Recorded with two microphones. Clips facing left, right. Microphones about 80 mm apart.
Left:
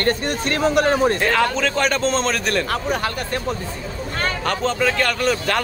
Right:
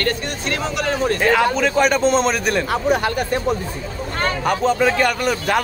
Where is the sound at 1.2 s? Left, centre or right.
Centre.